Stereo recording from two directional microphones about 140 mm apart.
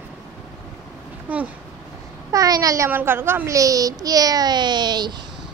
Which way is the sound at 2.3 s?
25° right (ahead or behind).